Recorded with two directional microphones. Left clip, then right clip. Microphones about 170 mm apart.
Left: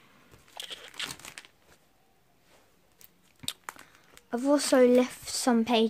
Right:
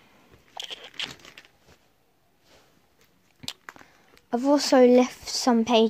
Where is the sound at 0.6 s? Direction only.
10° right (ahead or behind).